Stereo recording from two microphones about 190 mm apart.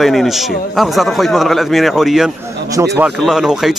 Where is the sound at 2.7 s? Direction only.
15° right (ahead or behind).